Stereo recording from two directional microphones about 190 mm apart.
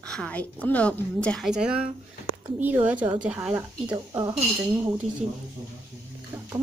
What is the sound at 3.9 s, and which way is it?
Speech, 20° right (ahead or behind).